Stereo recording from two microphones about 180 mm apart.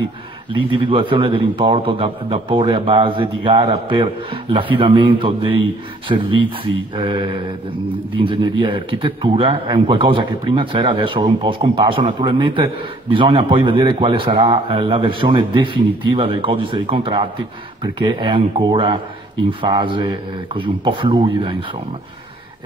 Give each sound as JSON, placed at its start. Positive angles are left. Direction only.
{"t": 0.5, "sound": "a man's voice", "side_deg": -30}
{"t": 8.3, "sound": "a man's voice", "side_deg": -25}